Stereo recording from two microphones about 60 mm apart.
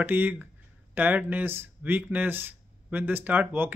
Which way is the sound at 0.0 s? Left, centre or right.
Right.